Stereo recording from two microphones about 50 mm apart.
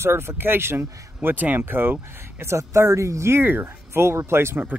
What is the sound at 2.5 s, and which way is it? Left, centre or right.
Speech, right.